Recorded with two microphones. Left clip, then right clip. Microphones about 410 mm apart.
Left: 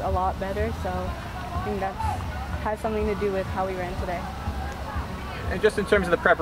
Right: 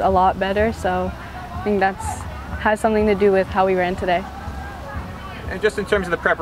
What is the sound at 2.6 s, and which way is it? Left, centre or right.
Speech, right.